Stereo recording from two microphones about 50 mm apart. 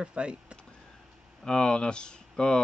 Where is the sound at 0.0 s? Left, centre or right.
Right.